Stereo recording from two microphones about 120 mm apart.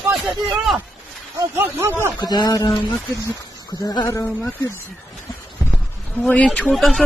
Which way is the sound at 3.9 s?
30° left (ahead or behind).